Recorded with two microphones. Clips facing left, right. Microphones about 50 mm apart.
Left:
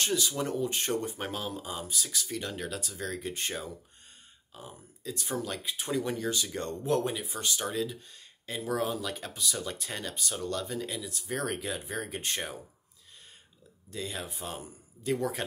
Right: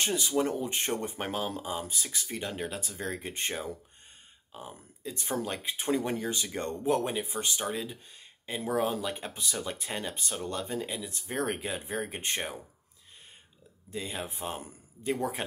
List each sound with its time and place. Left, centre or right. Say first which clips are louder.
0.0 s speech: right 2 dB; right
13.8 s speech: right 1 dB; right